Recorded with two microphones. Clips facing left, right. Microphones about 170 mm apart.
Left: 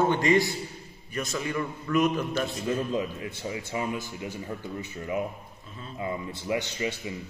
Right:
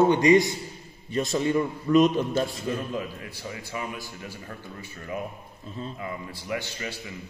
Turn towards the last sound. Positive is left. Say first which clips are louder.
# left 3 dB
turn(degrees=20)  # may be behind; listen again after turning